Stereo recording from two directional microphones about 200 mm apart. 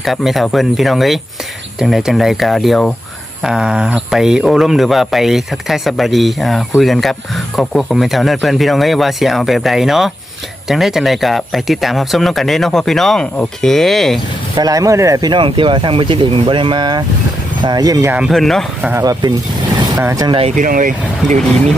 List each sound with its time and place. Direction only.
0.0 s speech: centre (ahead or behind)
14.5 s speech: 20° right (ahead or behind)
18.3 s speech: centre (ahead or behind)
18.9 s speech: 15° right (ahead or behind)
20.4 s speech: 40° right (ahead or behind)